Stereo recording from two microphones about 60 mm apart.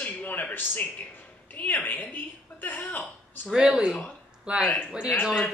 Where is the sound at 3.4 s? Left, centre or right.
Centre.